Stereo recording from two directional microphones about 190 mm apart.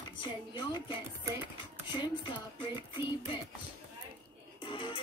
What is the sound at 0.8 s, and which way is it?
Music, 15° right (ahead or behind).